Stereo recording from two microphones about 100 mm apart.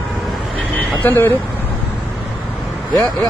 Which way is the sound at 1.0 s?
25° left (ahead or behind).